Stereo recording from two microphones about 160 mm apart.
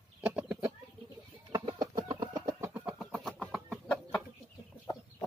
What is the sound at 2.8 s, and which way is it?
Vehicle, centre (ahead or behind).